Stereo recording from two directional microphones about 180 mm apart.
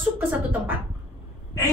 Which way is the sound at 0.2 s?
10° right (ahead or behind).